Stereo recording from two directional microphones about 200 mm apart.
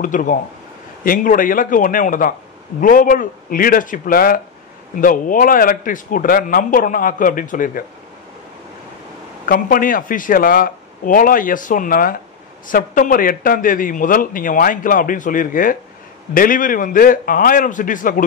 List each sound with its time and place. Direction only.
0.0 s a man's voice: 40° left (ahead or behind)
9.5 s a man's voice: 45° left (ahead or behind)